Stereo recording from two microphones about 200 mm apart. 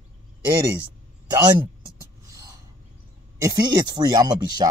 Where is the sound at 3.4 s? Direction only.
20° right (ahead or behind).